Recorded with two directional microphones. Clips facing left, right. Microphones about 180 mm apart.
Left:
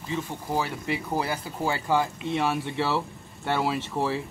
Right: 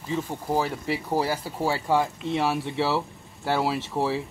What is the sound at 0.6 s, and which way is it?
Speech, 40° right (ahead or behind).